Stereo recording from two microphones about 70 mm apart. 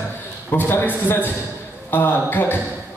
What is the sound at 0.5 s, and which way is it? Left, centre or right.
A man's voice, left.